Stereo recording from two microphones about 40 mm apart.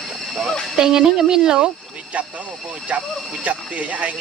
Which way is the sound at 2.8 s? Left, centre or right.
Right.